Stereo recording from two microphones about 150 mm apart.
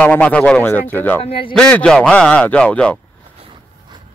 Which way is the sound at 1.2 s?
40° left (ahead or behind).